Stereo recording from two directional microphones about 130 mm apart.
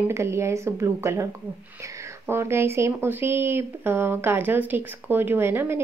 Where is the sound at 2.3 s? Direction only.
20° right (ahead or behind).